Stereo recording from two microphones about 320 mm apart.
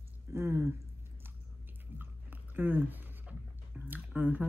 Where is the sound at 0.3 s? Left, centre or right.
Centre.